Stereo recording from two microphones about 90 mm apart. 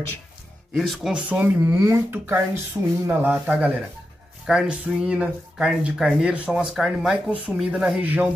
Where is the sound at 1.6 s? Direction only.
35° right (ahead or behind).